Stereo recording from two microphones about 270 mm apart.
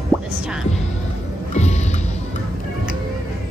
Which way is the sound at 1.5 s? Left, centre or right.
Left.